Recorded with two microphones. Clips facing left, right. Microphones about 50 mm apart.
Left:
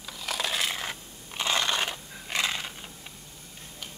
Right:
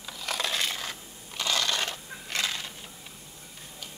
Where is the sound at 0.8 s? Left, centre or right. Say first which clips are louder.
Left 2 dB; left.